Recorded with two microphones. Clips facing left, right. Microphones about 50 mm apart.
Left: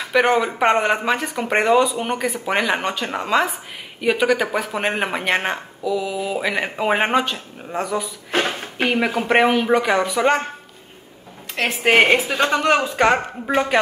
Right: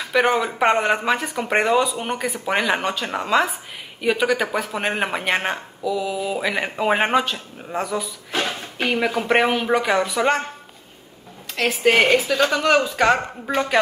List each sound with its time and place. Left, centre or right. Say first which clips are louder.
0.1 s speech: left 2 dB; centre
8.3 s a sound: left 4 dB; left
8.8 s speech: left 1 dB; centre
11.5 s a woman's voice: left 1 dB; left